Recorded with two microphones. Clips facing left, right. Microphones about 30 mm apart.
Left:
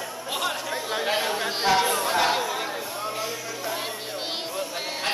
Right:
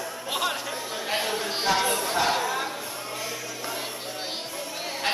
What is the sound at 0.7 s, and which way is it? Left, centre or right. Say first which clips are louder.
Chatter: left 4 dB; left.